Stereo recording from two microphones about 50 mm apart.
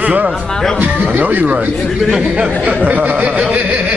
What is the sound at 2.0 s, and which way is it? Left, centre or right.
Speech, centre.